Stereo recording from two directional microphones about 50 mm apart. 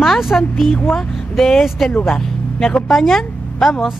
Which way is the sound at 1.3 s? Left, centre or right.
Centre.